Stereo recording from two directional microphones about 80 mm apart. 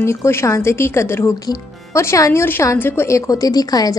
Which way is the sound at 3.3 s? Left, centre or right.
Left.